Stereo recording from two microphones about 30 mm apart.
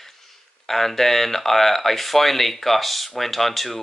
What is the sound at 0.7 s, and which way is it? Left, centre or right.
Speech, centre.